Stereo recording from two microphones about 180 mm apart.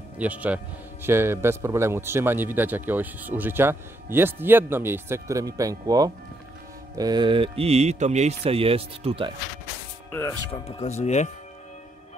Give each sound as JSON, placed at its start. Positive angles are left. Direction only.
{"t": 0.2, "sound": "a man's voice", "side_deg": -10}
{"t": 10.5, "sound": "speech", "side_deg": 35}